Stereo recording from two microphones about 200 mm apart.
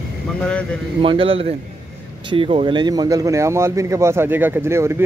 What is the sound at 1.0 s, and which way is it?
Speech, 25° right (ahead or behind).